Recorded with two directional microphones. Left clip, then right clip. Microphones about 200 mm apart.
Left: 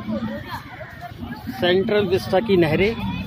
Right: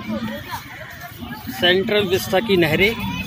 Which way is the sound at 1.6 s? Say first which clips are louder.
Right 2 dB; 5° left (ahead or behind).